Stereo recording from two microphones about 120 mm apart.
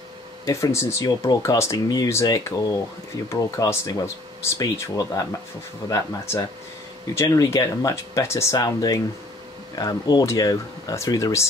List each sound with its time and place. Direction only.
0.5 s speech: 25° left (ahead or behind)